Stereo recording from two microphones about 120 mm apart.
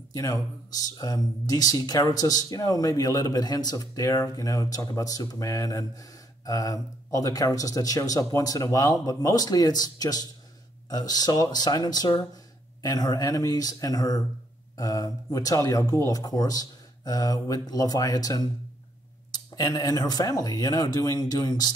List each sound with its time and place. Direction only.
0.1 s speech: 30° left (ahead or behind)